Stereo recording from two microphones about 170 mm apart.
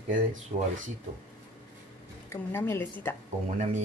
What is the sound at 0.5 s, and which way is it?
Speech, 35° right (ahead or behind).